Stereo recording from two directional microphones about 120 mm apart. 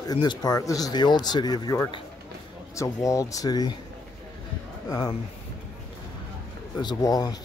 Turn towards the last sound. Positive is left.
turn(degrees=35)  # may be behind; listen again after turning